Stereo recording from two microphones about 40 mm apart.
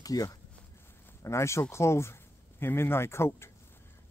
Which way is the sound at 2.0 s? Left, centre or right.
Left.